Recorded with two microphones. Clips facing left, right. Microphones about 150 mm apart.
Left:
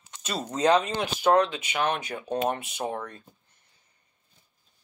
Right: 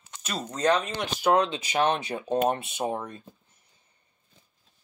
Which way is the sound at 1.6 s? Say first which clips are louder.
Right 3 dB; 35° right (ahead or behind).